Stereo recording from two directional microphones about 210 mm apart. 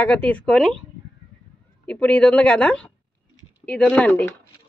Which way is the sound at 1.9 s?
5° left (ahead or behind).